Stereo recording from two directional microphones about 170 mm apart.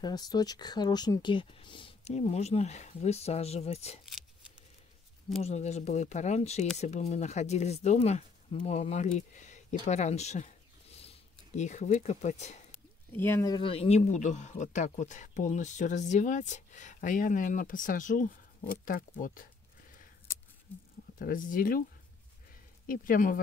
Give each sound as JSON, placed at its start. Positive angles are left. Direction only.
{"t": 0.0, "sound": "speech", "side_deg": 25}
{"t": 4.0, "sound": "shuffling cards", "side_deg": -5}
{"t": 5.4, "sound": "speech", "side_deg": 40}
{"t": 13.1, "sound": "speech", "side_deg": 15}
{"t": 13.6, "sound": "speech", "side_deg": 35}
{"t": 21.2, "sound": "speech", "side_deg": 55}
{"t": 22.8, "sound": "speech", "side_deg": 55}